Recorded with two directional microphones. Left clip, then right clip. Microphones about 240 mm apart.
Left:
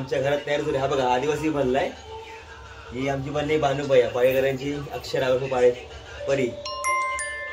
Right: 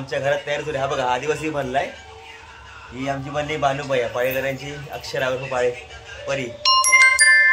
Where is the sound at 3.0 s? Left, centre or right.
Centre.